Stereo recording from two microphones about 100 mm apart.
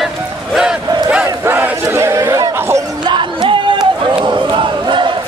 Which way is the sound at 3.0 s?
50° right (ahead or behind).